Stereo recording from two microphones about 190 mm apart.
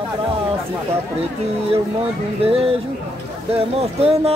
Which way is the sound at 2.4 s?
30° right (ahead or behind).